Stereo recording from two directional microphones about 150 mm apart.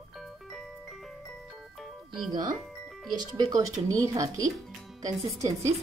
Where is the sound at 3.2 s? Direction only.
25° right (ahead or behind).